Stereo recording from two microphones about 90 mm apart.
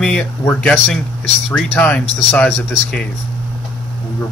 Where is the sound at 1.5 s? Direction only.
10° left (ahead or behind).